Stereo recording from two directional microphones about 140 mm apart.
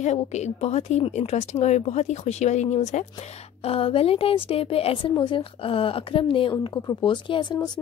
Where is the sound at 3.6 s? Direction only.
40° left (ahead or behind).